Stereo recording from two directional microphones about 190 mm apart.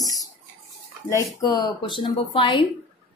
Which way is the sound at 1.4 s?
20° left (ahead or behind).